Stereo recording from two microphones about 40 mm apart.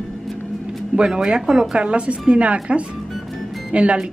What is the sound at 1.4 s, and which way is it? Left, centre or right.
Speech, centre.